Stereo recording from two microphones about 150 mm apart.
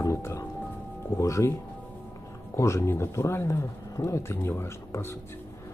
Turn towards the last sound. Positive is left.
turn(degrees=15)  # may be behind; listen again after turning